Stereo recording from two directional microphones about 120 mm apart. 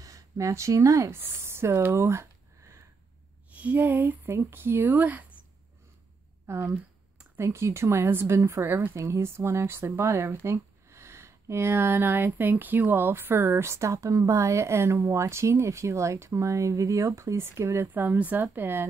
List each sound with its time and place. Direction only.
0.0 s speech: 30° right (ahead or behind)
3.5 s speech: 15° right (ahead or behind)
6.4 s a woman's voice: 20° right (ahead or behind)